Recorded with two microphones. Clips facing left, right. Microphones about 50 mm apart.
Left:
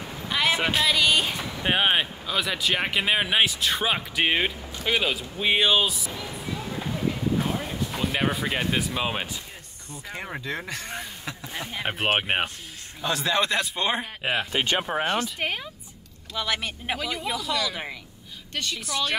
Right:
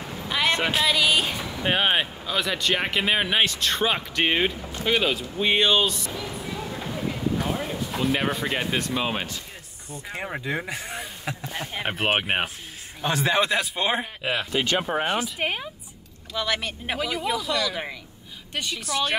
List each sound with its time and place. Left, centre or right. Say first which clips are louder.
0.3 s speech: even; centre
10.0 s speech: right 2 dB; centre
11.8 s speech: even; centre
13.0 s a man's voice: right 2 dB; right
13.4 s speech: right 1 dB; centre
14.2 s speech: left 2 dB; left
14.9 s speech: right 1 dB; centre
16.3 s speech: right 1 dB; centre
18.5 s speech: right 2 dB; centre